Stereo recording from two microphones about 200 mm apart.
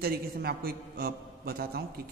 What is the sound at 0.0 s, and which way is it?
A man's voice, 50° right (ahead or behind).